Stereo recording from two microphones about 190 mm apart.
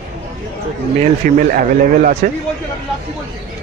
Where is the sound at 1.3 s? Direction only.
45° right (ahead or behind).